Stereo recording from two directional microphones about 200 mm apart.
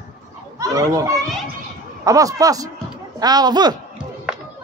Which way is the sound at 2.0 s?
15° right (ahead or behind).